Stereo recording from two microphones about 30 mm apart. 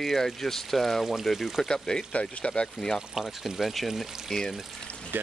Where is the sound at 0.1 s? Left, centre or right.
Centre.